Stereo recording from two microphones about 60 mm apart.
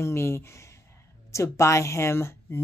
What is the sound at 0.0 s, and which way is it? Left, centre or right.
Speech, left.